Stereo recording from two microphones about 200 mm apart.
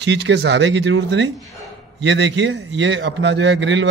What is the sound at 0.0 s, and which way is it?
A man's voice, 60° right (ahead or behind).